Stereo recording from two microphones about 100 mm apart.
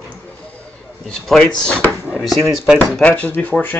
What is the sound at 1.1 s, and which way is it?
Speech, 5° left (ahead or behind).